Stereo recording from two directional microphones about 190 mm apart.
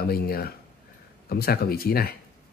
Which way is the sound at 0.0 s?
55° left (ahead or behind).